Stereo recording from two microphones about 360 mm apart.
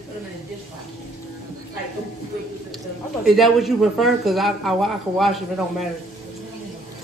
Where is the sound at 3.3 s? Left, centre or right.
Centre.